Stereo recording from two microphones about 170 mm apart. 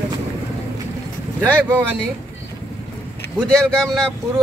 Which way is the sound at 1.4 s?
10° right (ahead or behind).